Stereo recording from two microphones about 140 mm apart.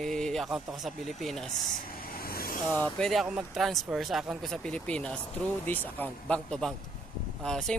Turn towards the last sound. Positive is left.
turn(degrees=5)  # may be behind; listen again after turning